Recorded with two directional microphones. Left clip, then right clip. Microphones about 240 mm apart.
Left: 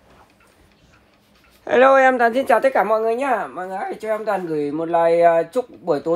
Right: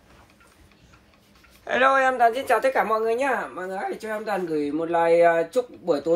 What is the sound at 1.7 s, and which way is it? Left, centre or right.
A woman's voice, left.